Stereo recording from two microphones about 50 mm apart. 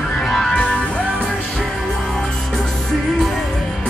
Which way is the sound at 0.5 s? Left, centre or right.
Centre.